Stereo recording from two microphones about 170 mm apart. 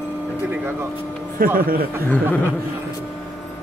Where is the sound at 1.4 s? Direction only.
55° right (ahead or behind).